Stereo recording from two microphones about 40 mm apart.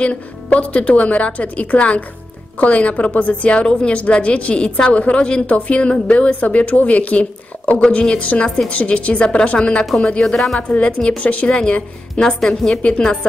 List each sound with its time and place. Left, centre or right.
0.0 s a woman's voice: left
7.8 s a woman's voice: left
10.2 s speech: centre
10.7 s a woman's voice: left
12.4 s a woman's voice: centre
12.8 s a woman's voice: left